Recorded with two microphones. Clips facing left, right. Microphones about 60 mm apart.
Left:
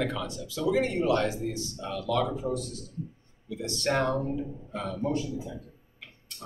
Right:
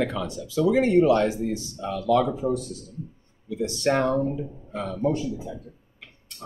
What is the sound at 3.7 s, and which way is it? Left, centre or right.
Speech, right.